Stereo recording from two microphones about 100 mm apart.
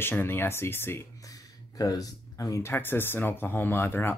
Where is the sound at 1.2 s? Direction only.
35° left (ahead or behind).